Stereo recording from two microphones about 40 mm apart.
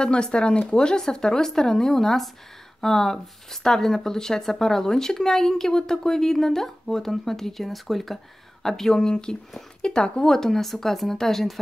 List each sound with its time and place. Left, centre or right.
0.0 s speech: left; by 11.6 s centre